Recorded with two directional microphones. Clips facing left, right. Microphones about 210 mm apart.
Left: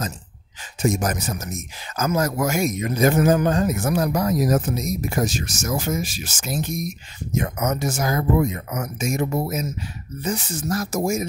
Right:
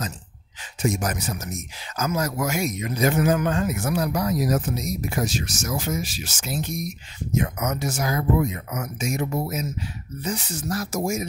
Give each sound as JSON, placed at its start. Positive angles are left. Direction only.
{"t": 0.8, "sound": "speech", "side_deg": 45}